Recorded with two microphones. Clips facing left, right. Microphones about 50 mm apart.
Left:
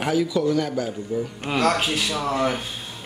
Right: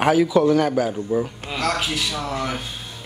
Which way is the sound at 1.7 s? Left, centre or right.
Centre.